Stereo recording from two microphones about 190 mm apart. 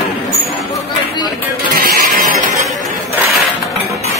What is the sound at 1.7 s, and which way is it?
Sheep, 50° right (ahead or behind).